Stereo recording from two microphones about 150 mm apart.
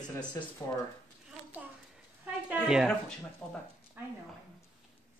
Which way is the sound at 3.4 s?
5° left (ahead or behind).